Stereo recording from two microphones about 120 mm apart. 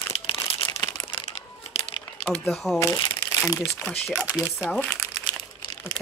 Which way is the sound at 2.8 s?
30° left (ahead or behind).